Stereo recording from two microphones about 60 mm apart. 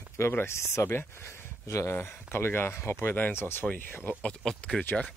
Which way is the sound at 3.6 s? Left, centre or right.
Left.